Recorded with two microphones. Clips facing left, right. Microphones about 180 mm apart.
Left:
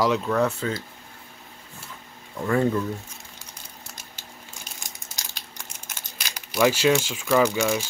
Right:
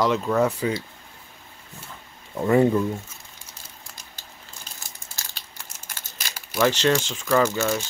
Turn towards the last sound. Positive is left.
turn(degrees=10)  # may be behind; listen again after turning